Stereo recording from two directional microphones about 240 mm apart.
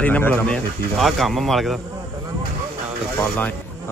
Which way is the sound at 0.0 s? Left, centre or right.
Centre.